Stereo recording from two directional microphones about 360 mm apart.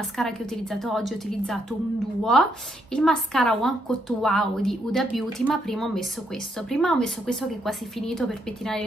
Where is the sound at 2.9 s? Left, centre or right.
Centre.